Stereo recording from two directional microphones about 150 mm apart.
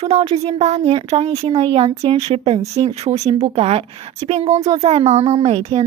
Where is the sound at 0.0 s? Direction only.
40° right (ahead or behind).